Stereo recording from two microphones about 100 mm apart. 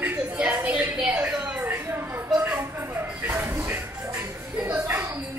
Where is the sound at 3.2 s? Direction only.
25° right (ahead or behind).